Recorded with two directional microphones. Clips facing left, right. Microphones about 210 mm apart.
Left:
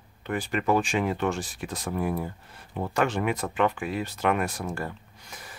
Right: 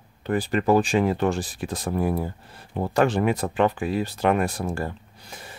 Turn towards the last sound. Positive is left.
turn(degrees=-30)  # may be behind; listen again after turning